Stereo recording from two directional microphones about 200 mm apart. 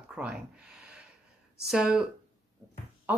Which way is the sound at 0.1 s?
5° right (ahead or behind).